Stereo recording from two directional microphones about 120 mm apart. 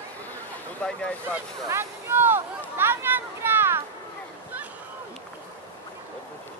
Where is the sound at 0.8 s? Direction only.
10° left (ahead or behind).